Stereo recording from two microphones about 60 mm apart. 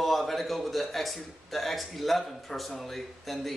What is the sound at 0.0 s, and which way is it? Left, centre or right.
Speech, centre.